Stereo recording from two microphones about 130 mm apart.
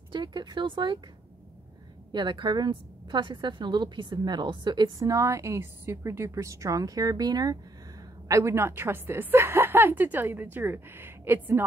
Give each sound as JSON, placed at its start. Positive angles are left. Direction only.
{"t": 0.1, "sound": "speech", "side_deg": -35}
{"t": 2.1, "sound": "a woman's voice", "side_deg": -35}